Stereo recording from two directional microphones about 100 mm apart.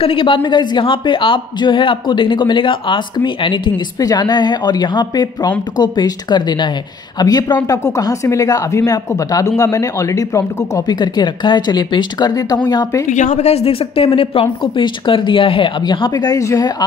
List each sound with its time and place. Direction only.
0.0 s a woman's voice: 60° left (ahead or behind)
4.0 s speech: 40° left (ahead or behind)
13.4 s a woman's voice: 90° left; by 15.7 s 60° left (ahead or behind)
15.8 s speech: 45° left (ahead or behind)